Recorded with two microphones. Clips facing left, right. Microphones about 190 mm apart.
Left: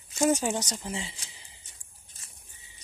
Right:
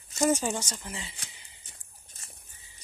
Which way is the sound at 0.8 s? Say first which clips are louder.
Left 5 dB; 30° left (ahead or behind).